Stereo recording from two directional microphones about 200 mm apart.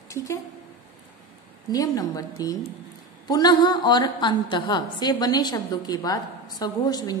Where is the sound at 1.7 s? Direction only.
20° left (ahead or behind).